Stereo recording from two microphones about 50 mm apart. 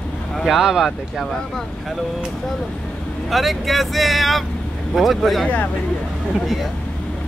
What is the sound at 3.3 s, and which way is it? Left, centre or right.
Speech, centre.